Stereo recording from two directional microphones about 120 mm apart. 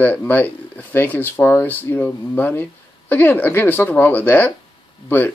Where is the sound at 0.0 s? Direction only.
15° left (ahead or behind).